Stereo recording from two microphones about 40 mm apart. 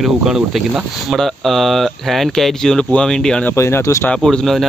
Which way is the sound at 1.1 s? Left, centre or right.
Centre.